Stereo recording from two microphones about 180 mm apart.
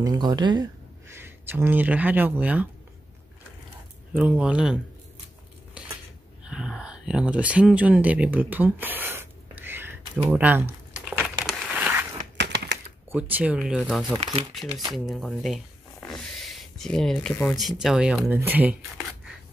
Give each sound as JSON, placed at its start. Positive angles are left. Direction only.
{"t": 0.0, "sound": "speech", "side_deg": -25}
{"t": 1.1, "sound": "speech", "side_deg": -10}
{"t": 4.1, "sound": "speech", "side_deg": -5}
{"t": 6.4, "sound": "a sound", "side_deg": -5}
{"t": 10.3, "sound": "speech", "side_deg": -10}
{"t": 11.1, "sound": "crumpling", "side_deg": -5}
{"t": 13.1, "sound": "speech", "side_deg": -10}
{"t": 16.0, "sound": "a sound", "side_deg": 0}
{"t": 17.6, "sound": "speech", "side_deg": 0}